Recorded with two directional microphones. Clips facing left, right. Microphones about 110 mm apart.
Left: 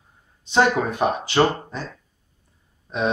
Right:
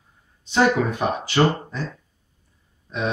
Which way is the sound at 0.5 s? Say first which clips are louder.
Even; 25° left (ahead or behind).